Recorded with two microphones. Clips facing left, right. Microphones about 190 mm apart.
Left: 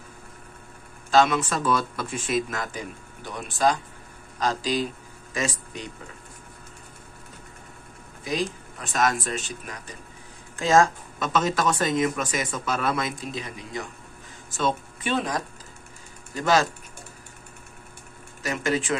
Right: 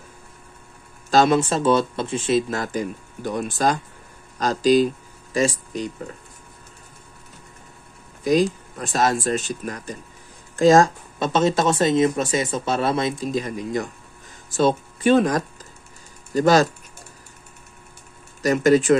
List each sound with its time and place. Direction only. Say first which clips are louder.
1.1 s speech: right 4 dB; 35° right (ahead or behind)
3.3 s speech: right 2 dB; 45° right (ahead or behind)
8.2 s speech: right 10 dB; 40° right (ahead or behind)
9.2 s speech: right 8 dB; 45° right (ahead or behind)
13.3 s speech: right 9 dB; 45° right (ahead or behind)
15.1 s speech: right 6 dB; 50° right (ahead or behind)
16.3 s speech: right 6 dB; 40° right (ahead or behind)
18.4 s speech: right 10 dB; 40° right (ahead or behind)